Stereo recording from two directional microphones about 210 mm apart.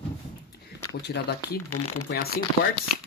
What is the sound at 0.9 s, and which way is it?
Speech, 50° left (ahead or behind).